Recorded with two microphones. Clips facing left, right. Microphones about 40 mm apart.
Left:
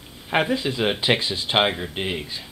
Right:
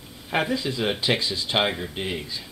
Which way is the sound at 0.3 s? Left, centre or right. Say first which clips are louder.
Left 3 dB; left.